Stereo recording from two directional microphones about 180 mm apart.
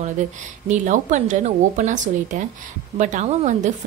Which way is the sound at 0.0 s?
45° right (ahead or behind).